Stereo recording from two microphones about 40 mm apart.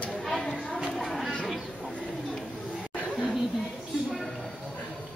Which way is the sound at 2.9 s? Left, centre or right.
Left.